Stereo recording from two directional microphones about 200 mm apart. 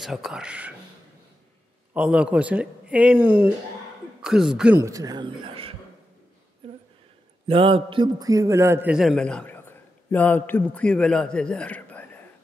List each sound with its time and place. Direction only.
0.0 s a man's voice: centre (ahead or behind)
2.0 s a man's voice: 5° right (ahead or behind); by 5.7 s 25° right (ahead or behind)
7.4 s a man's voice: 25° right (ahead or behind); by 12.1 s 5° left (ahead or behind)